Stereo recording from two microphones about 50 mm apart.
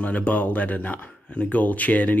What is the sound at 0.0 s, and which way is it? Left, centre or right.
Speech, left.